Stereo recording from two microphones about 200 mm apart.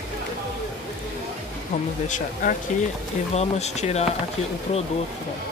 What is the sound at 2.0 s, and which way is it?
Speech, 40° left (ahead or behind).